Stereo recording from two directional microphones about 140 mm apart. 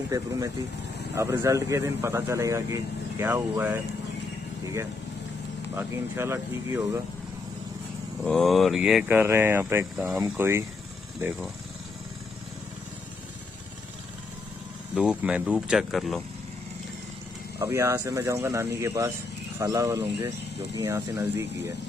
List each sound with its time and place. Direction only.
1.1 s speech: 20° right (ahead or behind)
5.8 s speech: 15° right (ahead or behind)
8.2 s speech: centre (ahead or behind)
15.0 s speech: 10° right (ahead or behind)
17.6 s speech: 20° right (ahead or behind)